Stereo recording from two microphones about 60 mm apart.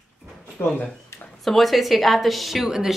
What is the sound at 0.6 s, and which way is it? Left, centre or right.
Speech, left.